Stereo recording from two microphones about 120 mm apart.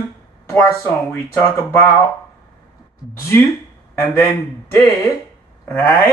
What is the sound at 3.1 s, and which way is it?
A man's voice, 20° left (ahead or behind).